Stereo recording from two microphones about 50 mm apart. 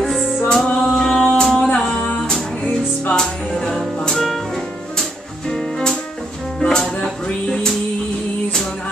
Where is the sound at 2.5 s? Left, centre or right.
Left.